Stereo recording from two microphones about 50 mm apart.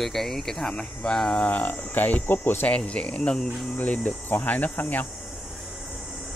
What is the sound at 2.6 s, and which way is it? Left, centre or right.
Speech, left.